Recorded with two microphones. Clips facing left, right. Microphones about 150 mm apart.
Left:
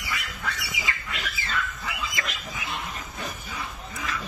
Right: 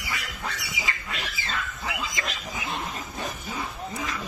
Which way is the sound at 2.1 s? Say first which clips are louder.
Right 1 dB; 30° right (ahead or behind).